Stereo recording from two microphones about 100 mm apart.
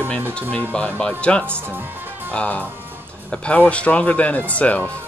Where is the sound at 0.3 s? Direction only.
10° left (ahead or behind).